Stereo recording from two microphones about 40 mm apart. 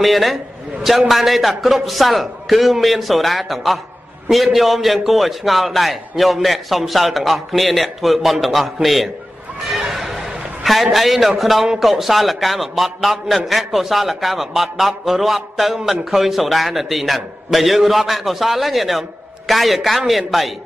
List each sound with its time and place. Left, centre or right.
0.0 s a man's voice: centre
9.7 s a sound: centre
10.6 s a man's voice: centre